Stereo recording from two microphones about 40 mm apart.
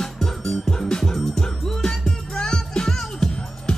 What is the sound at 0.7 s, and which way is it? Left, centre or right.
Music, centre.